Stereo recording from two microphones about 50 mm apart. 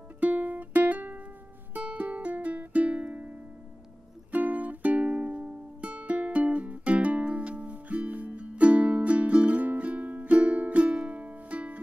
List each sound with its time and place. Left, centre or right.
0.2 s music: right